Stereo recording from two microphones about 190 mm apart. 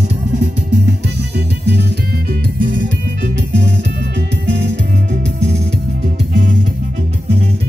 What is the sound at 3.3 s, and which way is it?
Music, 70° right (ahead or behind).